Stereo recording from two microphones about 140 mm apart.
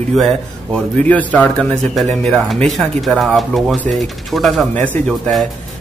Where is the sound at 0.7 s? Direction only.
10° left (ahead or behind).